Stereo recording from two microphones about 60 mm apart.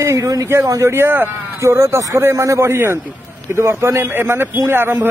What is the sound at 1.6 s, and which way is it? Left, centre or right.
Speech, right.